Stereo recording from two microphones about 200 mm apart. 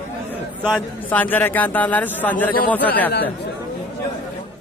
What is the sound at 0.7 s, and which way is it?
A man's voice, 10° left (ahead or behind).